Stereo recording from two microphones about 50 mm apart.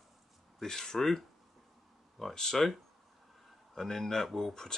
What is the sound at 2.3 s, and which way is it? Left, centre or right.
Speech, centre.